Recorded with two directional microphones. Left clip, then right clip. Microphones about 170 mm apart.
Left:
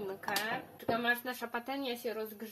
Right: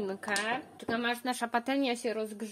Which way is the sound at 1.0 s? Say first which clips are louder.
Right 2 dB; 50° right (ahead or behind).